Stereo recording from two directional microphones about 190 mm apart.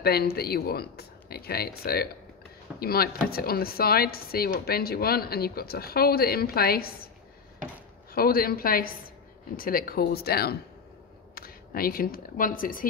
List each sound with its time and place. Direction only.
0.0 s speech: 55° left (ahead or behind)
8.1 s speech: 50° left (ahead or behind)